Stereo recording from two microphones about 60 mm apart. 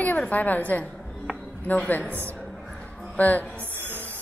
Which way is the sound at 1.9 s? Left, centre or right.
Left.